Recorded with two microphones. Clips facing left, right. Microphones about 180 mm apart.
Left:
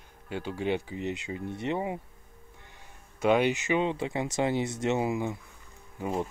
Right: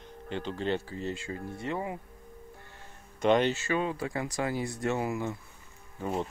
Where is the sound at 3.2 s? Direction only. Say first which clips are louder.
Left 1 dB; 10° left (ahead or behind).